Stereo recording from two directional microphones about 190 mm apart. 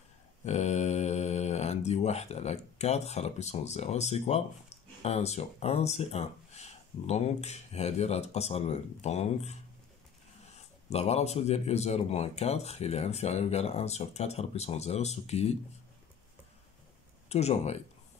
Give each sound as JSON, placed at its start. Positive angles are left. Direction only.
{"t": 0.5, "sound": "speech", "side_deg": 35}
{"t": 10.9, "sound": "speech", "side_deg": 35}
{"t": 17.3, "sound": "speech", "side_deg": 35}